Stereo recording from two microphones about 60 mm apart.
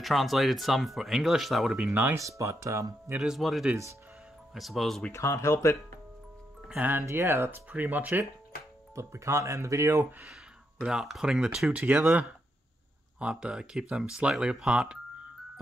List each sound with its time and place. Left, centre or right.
0.0 s speech: centre
2.1 s speech: right
3.2 s speech: centre
5.1 s speech: left
6.8 s speech: right
7.1 s speech: right
7.7 s speech: right
8.9 s speech: right
10.8 s speech: centre
12.1 s speech: right